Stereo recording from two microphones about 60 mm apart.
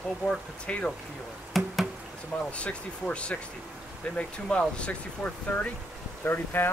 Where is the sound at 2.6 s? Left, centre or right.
Left.